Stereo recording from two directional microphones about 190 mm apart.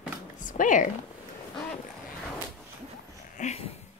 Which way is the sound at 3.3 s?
35° left (ahead or behind).